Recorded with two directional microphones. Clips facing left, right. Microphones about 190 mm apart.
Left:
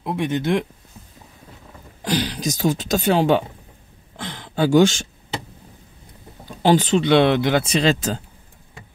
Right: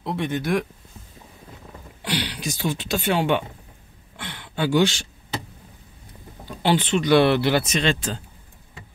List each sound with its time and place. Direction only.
0.0 s speech: 15° left (ahead or behind)
2.0 s speech: 40° left (ahead or behind)
6.6 s speech: 40° left (ahead or behind)
7.0 s speech: 20° left (ahead or behind)
7.6 s speech: 35° left (ahead or behind)